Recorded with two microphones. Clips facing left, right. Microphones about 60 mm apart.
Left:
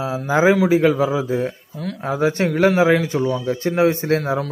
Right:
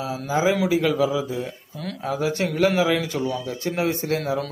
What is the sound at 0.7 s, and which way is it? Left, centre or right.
A man's voice, left.